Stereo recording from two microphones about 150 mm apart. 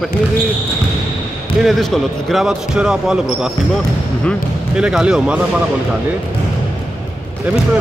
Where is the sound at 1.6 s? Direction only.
Centre (ahead or behind).